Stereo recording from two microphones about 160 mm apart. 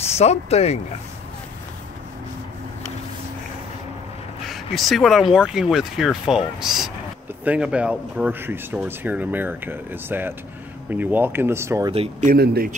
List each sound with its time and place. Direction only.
0.0 s speech: 40° left (ahead or behind)
4.5 s speech: centre (ahead or behind); by 11.9 s 15° right (ahead or behind)
11.9 s speech: 40° right (ahead or behind)
12.3 s speech: 65° right (ahead or behind)